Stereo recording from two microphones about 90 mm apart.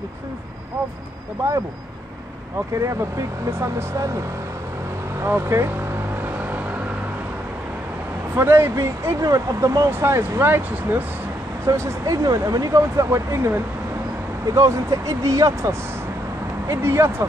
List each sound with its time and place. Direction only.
2.8 s speech: 35° right (ahead or behind)
5.2 s speech: 30° right (ahead or behind)
8.4 s speech: 25° right (ahead or behind)